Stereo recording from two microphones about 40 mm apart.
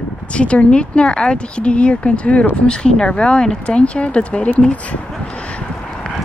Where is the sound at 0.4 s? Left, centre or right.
Left.